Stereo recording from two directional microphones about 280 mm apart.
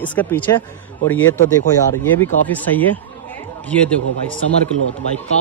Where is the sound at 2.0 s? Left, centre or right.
Centre.